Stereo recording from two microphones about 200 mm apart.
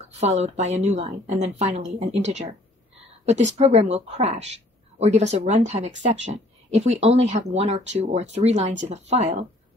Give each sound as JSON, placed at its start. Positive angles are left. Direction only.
{"t": 0.0, "sound": "a woman's voice", "side_deg": -35}